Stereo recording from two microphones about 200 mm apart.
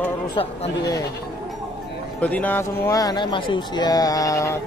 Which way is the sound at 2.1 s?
5° left (ahead or behind).